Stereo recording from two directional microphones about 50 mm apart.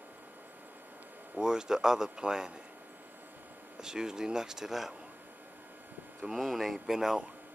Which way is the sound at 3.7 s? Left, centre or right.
Centre.